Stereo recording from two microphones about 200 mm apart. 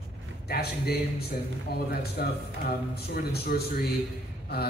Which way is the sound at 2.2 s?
50° left (ahead or behind).